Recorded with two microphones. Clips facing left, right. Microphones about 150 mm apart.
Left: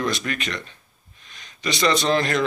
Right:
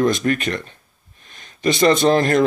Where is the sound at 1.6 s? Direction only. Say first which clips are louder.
Right 6 dB; 50° right (ahead or behind).